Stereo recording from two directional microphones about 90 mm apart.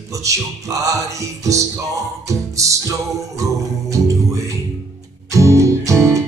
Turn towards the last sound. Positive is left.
turn(degrees=-35)  # may be behind; listen again after turning